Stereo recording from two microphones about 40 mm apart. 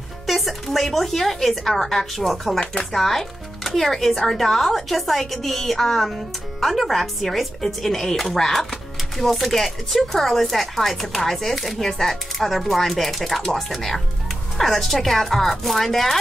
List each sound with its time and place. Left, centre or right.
0.3 s speech: centre